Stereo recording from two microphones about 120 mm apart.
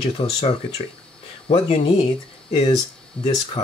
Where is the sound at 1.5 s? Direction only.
55° left (ahead or behind).